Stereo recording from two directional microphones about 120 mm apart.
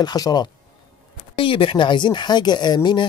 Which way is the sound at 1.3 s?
45° left (ahead or behind).